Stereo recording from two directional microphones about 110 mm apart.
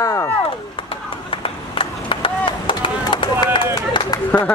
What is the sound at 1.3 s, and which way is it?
Run, 55° left (ahead or behind).